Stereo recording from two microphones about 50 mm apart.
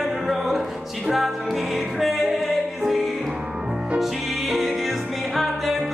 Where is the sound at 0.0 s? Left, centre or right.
Centre.